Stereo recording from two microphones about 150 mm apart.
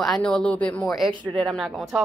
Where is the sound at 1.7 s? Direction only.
Centre (ahead or behind).